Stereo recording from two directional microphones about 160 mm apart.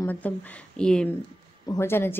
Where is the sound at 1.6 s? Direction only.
20° left (ahead or behind).